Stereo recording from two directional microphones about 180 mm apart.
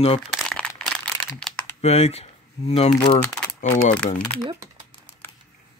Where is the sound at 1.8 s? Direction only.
35° left (ahead or behind).